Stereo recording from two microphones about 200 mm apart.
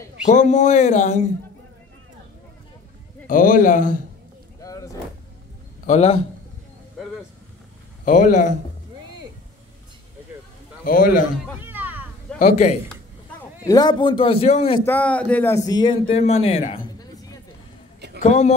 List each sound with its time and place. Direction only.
0.2 s a man's voice: 35° left (ahead or behind)
3.3 s a man's voice: 45° left (ahead or behind)
4.6 s a sound: 15° left (ahead or behind)
5.9 s a man's voice: 30° left (ahead or behind)
8.0 s a man's voice: 40° left (ahead or behind)
10.8 s a man's voice: 45° left (ahead or behind)
11.6 s a sound: 10° right (ahead or behind)
12.4 s a man's voice: 35° left (ahead or behind)
13.7 s a man's voice: 20° left (ahead or behind)
14.9 s a man's voice: 5° left (ahead or behind)
18.2 s a man's voice: 35° left (ahead or behind)